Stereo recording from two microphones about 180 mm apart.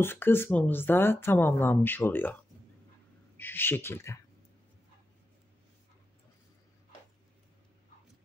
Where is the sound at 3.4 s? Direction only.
10° left (ahead or behind).